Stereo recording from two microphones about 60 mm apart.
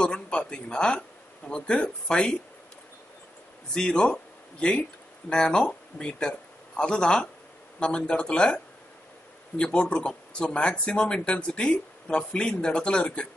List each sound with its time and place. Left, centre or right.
0.0 s speech: centre
3.7 s speech: centre
9.6 s speech: centre